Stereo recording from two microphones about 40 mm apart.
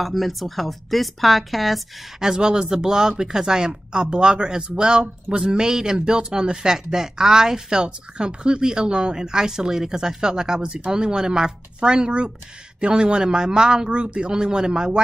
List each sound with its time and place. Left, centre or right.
0.0 s a woman's voice: centre
2.1 s speech: centre